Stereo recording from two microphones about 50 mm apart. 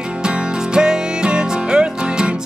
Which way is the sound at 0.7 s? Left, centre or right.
Centre.